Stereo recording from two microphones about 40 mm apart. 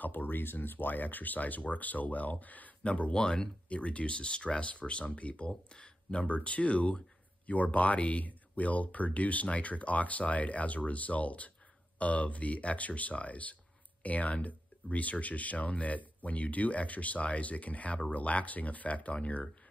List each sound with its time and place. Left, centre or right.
0.0 s speech: left
3.1 s speech: centre
3.6 s speech: left